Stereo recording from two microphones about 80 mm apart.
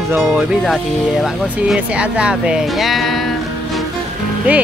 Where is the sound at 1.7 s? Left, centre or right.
Centre.